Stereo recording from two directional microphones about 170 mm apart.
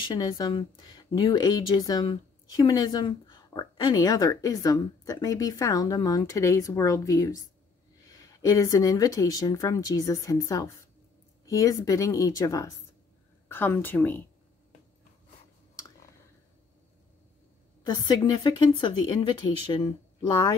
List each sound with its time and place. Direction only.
0.1 s a woman's voice: 20° left (ahead or behind)
17.8 s speech: 25° left (ahead or behind)